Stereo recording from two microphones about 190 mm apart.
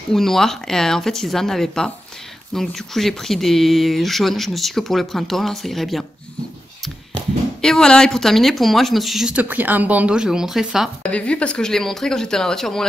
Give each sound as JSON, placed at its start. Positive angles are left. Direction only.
{"t": 0.1, "sound": "speech", "side_deg": 0}
{"t": 7.6, "sound": "speech", "side_deg": 5}